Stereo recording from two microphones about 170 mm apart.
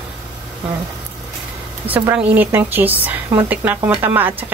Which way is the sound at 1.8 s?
10° right (ahead or behind).